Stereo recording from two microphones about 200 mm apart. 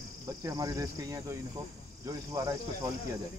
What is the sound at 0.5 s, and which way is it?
Speech, 15° right (ahead or behind).